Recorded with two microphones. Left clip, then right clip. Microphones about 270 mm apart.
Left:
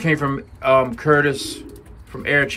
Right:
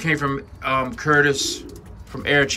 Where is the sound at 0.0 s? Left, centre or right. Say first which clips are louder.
Left 1 dB; centre.